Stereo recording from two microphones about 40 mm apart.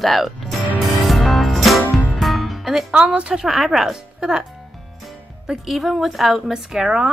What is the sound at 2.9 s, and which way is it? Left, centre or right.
Speech, right.